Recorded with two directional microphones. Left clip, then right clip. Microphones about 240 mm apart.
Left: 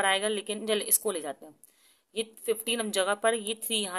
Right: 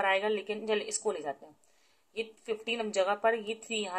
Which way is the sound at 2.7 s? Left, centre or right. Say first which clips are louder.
Left 1 dB; left.